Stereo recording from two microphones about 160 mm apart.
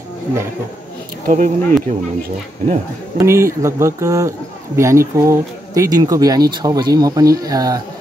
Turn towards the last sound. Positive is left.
turn(degrees=-20)  # may be behind; listen again after turning